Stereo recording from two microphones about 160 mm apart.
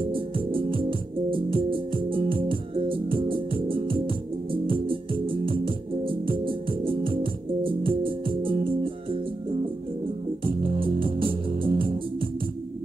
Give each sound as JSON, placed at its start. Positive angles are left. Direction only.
{"t": 0.1, "sound": "music", "side_deg": -35}
{"t": 10.4, "sound": "music", "side_deg": -35}